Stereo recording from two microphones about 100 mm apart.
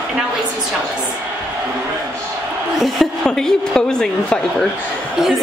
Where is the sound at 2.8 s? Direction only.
5° left (ahead or behind).